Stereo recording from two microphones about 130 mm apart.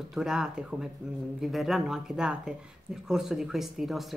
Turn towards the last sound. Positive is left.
turn(degrees=-5)  # may be behind; listen again after turning